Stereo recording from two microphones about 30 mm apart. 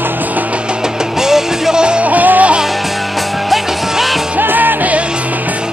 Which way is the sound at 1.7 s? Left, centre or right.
Right.